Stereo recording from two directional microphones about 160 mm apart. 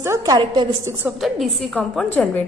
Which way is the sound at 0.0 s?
20° right (ahead or behind).